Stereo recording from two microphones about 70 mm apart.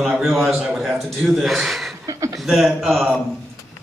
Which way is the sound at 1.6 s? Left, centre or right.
Centre.